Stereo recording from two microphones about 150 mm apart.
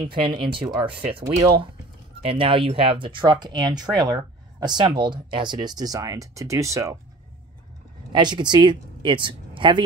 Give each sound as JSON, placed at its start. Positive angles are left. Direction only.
{"t": 0.0, "sound": "speech", "side_deg": -30}
{"t": 8.1, "sound": "speech", "side_deg": -30}